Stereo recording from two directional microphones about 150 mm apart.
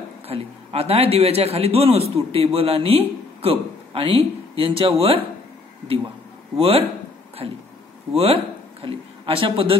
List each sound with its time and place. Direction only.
0.3 s a man's voice: 40° right (ahead or behind)
6.5 s a man's voice: 40° right (ahead or behind)